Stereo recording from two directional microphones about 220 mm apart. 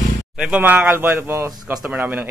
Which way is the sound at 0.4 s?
5° right (ahead or behind).